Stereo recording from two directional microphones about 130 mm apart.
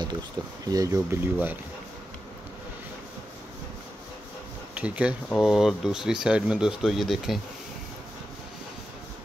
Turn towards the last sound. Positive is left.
turn(degrees=0)  # may be behind; listen again after turning